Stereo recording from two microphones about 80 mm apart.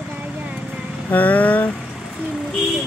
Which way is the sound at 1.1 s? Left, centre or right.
Left.